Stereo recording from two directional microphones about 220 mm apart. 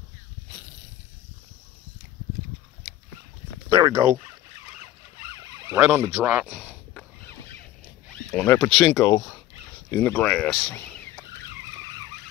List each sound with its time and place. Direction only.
3.7 s speech: 15° right (ahead or behind)
5.7 s speech: 10° right (ahead or behind)
8.3 s speech: 10° left (ahead or behind)